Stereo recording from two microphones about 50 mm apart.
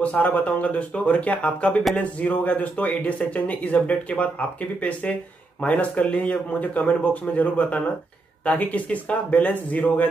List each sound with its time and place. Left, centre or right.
0.0 s speech: left